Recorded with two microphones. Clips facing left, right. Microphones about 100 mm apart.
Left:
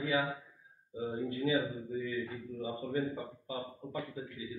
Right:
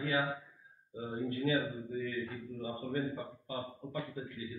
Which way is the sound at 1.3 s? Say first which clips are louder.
Left 1 dB; 5° left (ahead or behind).